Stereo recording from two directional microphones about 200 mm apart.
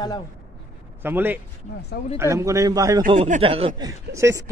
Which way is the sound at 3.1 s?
30° right (ahead or behind).